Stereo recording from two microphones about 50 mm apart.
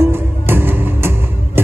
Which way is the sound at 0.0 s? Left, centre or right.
Right.